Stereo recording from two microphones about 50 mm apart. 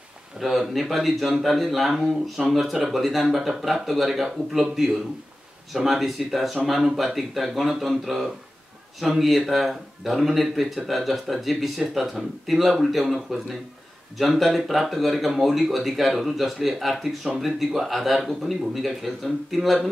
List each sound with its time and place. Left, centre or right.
0.4 s a man's voice: centre